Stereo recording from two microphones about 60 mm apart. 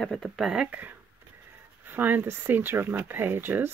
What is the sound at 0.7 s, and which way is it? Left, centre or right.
Speech, right.